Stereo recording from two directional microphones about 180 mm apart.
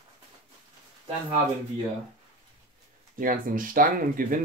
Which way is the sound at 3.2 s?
50° right (ahead or behind).